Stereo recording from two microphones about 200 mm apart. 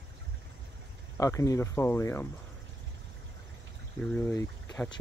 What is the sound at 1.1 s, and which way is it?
Speech, 15° left (ahead or behind).